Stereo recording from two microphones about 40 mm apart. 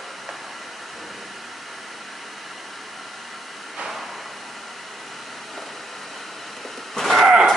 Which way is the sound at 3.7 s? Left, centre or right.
Centre.